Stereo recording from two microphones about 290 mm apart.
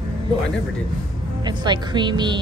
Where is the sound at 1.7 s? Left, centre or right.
Centre.